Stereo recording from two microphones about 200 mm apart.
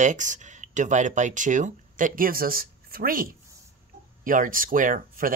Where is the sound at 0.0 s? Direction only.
40° right (ahead or behind).